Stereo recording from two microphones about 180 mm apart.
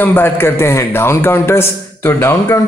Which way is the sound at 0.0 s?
10° left (ahead or behind).